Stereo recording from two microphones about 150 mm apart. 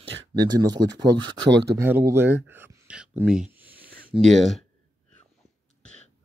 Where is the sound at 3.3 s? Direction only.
5° right (ahead or behind).